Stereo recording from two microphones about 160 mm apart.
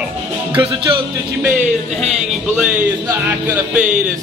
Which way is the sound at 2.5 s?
10° right (ahead or behind).